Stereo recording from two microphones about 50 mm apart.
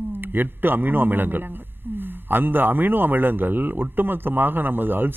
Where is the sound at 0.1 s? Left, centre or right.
Right.